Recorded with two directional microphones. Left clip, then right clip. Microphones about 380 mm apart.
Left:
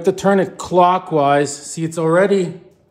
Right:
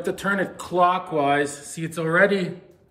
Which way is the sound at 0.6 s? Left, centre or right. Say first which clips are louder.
Left 5 dB; centre.